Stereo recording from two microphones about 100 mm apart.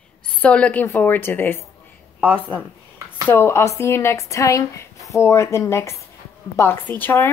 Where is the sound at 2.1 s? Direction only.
15° right (ahead or behind).